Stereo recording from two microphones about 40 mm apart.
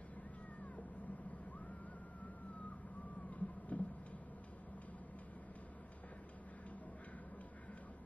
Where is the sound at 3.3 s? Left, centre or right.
Left.